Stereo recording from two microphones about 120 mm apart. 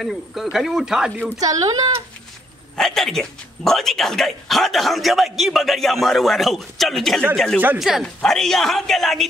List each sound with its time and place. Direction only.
0.0 s speech: centre (ahead or behind)
1.4 s speech: 30° right (ahead or behind)
2.8 s speech: 5° left (ahead or behind)